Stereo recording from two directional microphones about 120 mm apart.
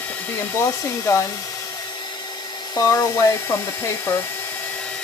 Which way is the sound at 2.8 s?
25° left (ahead or behind).